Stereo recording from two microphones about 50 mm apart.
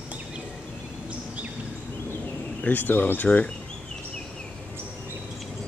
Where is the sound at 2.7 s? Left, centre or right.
Left.